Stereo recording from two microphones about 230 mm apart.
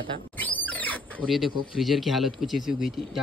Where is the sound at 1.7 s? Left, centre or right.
Centre.